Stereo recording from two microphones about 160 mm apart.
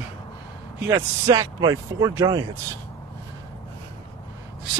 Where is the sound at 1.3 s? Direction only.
25° right (ahead or behind).